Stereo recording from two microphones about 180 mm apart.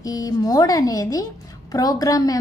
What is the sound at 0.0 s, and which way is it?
A woman's voice, 20° left (ahead or behind).